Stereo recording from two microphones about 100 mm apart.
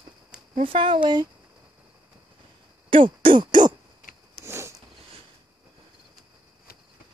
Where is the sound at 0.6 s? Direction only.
60° right (ahead or behind).